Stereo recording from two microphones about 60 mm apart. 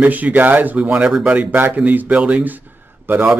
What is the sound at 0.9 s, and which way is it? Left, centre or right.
Speech, centre.